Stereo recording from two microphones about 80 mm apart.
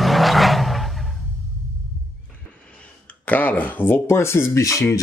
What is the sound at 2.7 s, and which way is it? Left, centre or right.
Speech, centre.